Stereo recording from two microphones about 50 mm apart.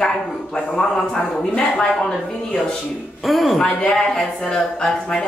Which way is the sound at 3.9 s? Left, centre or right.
Centre.